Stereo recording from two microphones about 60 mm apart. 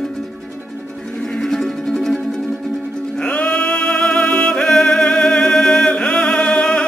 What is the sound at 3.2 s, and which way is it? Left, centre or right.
Music, left.